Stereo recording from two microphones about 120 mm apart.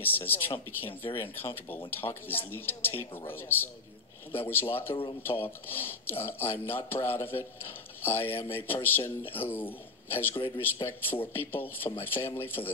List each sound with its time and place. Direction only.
0.0 s speech: 15° left (ahead or behind)
5.7 s speech: 20° left (ahead or behind)